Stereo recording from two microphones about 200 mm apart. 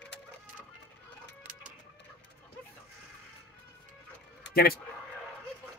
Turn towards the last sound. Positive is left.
turn(degrees=50)  # may be behind; listen again after turning